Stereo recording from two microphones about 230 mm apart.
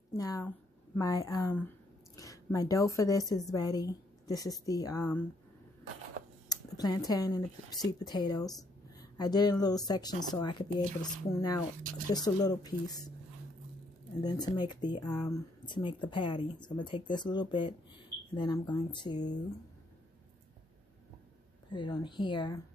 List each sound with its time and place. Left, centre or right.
0.1 s a woman's voice: centre
6.5 s speech: centre
11.3 s speech: centre
14.2 s speech: centre
21.7 s speech: left